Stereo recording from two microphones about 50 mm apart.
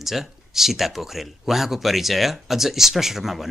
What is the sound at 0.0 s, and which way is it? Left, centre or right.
Speech, centre.